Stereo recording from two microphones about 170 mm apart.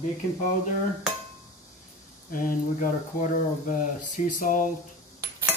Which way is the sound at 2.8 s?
50° left (ahead or behind).